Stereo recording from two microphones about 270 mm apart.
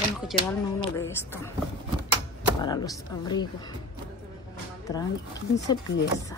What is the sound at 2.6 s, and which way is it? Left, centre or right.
Speech, centre.